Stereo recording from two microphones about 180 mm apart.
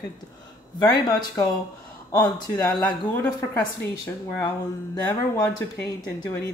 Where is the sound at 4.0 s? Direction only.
15° left (ahead or behind).